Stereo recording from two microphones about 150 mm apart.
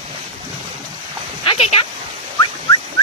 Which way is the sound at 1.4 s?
45° left (ahead or behind).